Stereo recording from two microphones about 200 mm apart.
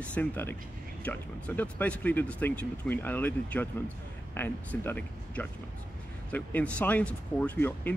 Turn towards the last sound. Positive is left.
turn(degrees=10)  # may be behind; listen again after turning